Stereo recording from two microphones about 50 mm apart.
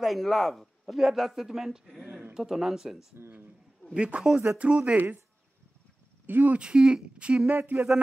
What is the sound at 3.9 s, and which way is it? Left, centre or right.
Speech, right.